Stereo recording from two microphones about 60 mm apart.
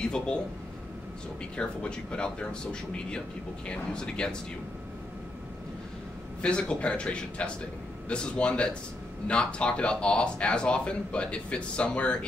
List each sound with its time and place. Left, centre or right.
0.0 s speech: centre
1.6 s speech: centre
6.4 s speech: centre